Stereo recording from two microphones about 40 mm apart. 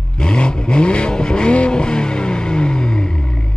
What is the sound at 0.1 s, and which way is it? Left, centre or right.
Vehicle, left.